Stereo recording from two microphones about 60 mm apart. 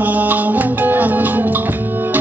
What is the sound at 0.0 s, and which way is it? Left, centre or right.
Music, right.